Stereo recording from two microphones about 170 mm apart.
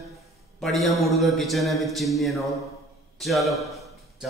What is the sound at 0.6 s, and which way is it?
A man's voice, centre (ahead or behind).